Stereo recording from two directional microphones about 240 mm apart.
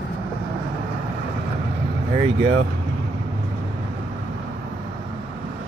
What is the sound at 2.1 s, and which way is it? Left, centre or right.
Speech, right.